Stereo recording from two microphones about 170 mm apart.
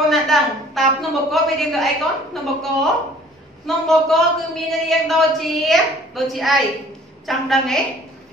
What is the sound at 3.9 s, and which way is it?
A woman's voice, centre (ahead or behind).